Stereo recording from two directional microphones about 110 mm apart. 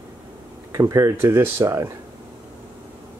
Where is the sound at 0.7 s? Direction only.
30° right (ahead or behind).